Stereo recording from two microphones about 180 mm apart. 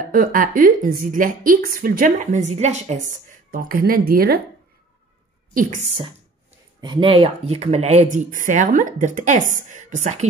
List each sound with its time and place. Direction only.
0.0 s a woman's voice: 50° right (ahead or behind)
3.1 s a woman's voice: 50° right (ahead or behind)
5.5 s speech: 50° right (ahead or behind)
6.8 s a woman's voice: 25° right (ahead or behind); by 10.2 s 40° right (ahead or behind)